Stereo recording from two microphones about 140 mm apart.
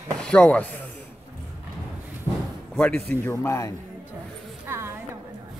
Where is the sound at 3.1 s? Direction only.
20° left (ahead or behind).